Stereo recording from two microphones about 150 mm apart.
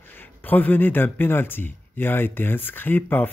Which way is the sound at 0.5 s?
10° left (ahead or behind).